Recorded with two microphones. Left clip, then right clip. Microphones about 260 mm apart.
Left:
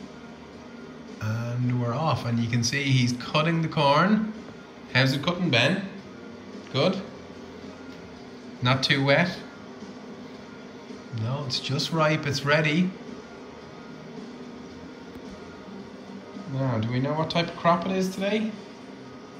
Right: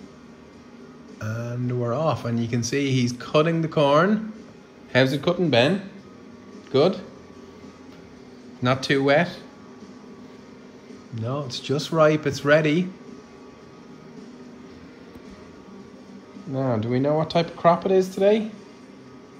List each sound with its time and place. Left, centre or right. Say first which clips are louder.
1.2 s speech: right 2 dB; centre
6.7 s speech: right 5 dB; centre
8.6 s speech: right 2 dB; centre
11.1 s speech: right 1 dB; centre
16.5 s speech: right 5 dB; centre